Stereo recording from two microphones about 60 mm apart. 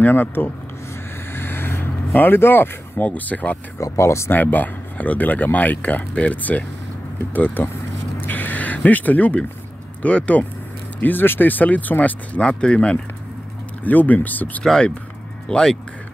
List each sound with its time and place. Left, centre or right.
0.0 s speech: left
1.3 s vehicle: left
3.0 s speech: left
3.8 s speech: left
4.3 s speech: left
8.3 s a sound: left
10.0 s speech: left
11.0 s speech: left
14.6 s speech: centre